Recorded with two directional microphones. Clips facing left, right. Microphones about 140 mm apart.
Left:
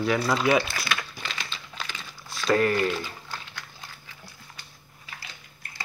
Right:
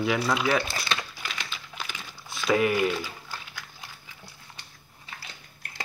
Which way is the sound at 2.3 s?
5° right (ahead or behind).